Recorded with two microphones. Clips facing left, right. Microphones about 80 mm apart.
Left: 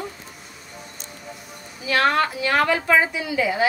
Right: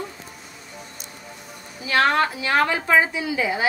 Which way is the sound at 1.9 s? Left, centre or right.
Right.